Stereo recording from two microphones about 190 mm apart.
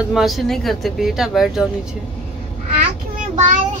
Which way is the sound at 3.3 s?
40° right (ahead or behind).